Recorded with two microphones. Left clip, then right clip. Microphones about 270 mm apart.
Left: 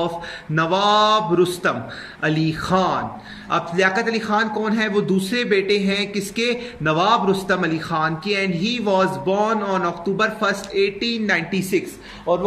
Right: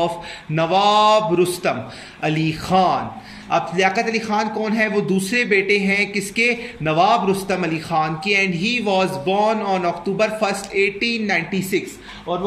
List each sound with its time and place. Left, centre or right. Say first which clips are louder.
0.6 s a man's voice: right 1 dB; centre
5.5 s speech: right 1 dB; left
6.8 s a man's voice: right 1 dB; centre
8.4 s speech: right 3 dB; left
8.7 s a man's voice: left 1 dB; centre
10.8 s speech: right 3 dB; left
11.2 s a man's voice: even; centre